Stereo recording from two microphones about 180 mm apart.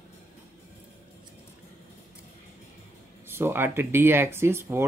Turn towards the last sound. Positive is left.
turn(degrees=-15)  # may be behind; listen again after turning